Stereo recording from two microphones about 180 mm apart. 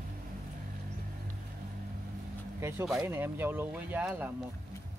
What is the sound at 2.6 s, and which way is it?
Speech, 15° right (ahead or behind).